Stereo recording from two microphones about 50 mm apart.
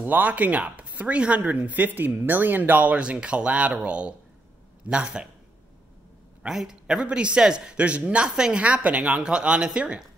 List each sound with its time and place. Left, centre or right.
0.0 s speech: right
6.5 s a man's voice: centre
7.1 s a man's voice: right
8.6 s a man's voice: right